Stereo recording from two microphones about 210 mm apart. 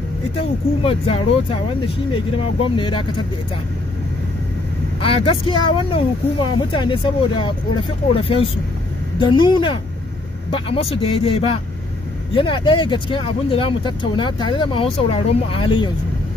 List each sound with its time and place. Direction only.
0.4 s speech: 25° left (ahead or behind)
5.0 s speech: 25° left (ahead or behind)